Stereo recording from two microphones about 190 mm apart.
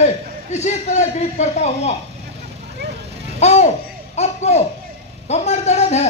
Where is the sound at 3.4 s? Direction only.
35° left (ahead or behind).